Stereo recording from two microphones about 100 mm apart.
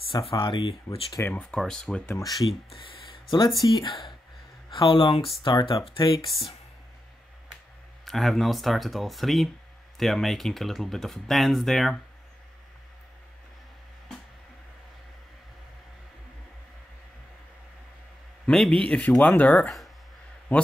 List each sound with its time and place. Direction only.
0.3 s speech: 60° left (ahead or behind)
1.2 s speech: 15° left (ahead or behind)
2.0 s speech: 35° left (ahead or behind)
2.4 s speech: 65° left (ahead or behind)
8.0 s speech: centre (ahead or behind)
18.5 s a man's voice: 5° left (ahead or behind)